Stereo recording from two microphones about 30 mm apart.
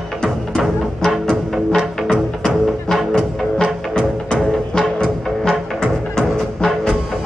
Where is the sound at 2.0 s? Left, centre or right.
Centre.